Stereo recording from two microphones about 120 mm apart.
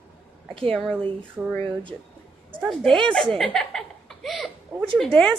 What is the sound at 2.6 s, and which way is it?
A woman's voice, 5° left (ahead or behind).